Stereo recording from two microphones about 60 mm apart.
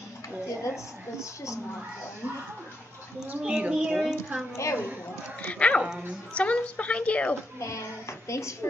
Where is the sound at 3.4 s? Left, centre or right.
Centre.